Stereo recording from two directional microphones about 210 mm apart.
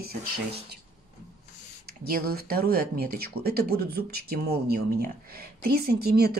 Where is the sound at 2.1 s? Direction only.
45° right (ahead or behind).